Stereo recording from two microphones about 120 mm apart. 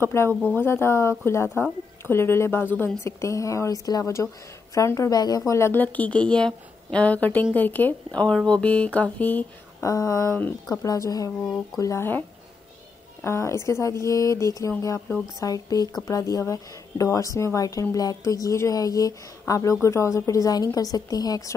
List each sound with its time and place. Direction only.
0.0 s a woman's voice: 20° left (ahead or behind)
5.5 s a woman's voice: 20° left (ahead or behind)
9.8 s a woman's voice: 25° left (ahead or behind)
13.2 s a woman's voice: 25° left (ahead or behind)